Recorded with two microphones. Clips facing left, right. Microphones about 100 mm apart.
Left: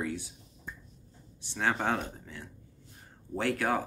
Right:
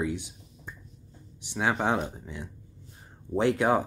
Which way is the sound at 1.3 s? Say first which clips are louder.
Right 3 dB; 15° right (ahead or behind).